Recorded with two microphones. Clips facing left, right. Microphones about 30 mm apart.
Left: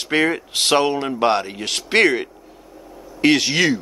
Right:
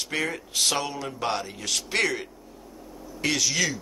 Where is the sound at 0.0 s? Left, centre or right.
Left.